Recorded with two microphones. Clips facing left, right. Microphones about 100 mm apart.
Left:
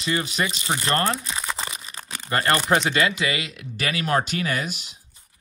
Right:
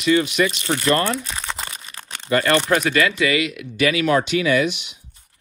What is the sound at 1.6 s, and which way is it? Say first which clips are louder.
Crumpling: even; 25° left (ahead or behind).